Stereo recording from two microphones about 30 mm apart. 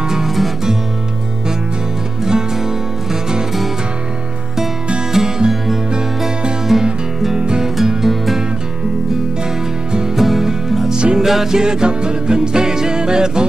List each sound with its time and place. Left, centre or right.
2.2 s music: centre
5.1 s music: centre
6.7 s music: centre
7.3 s music: right
7.6 s music: centre
10.1 s music: centre
10.9 s music: right
11.1 s music: centre
11.5 s music: right